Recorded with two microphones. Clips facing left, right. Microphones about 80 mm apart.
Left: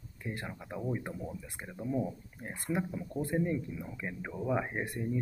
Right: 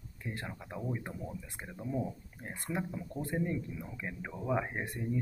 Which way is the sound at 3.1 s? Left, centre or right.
Left.